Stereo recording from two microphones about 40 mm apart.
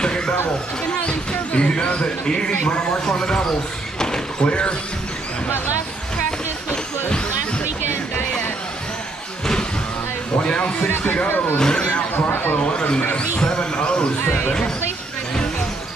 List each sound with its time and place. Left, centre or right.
0.0 s a sound: left
1.0 s speech: left
4.0 s a sound: centre
4.5 s speech: left
10.4 s a sound: left
11.2 s speech: left
11.5 s speech: left
12.3 s speech: left
12.7 s speech: left